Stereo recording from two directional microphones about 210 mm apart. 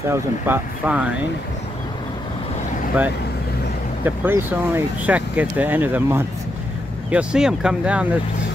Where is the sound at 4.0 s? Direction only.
10° right (ahead or behind).